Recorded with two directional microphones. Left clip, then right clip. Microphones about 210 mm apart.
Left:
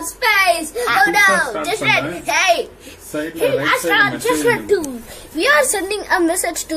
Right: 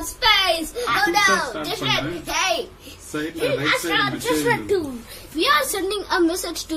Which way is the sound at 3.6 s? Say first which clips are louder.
Left 6 dB; centre (ahead or behind).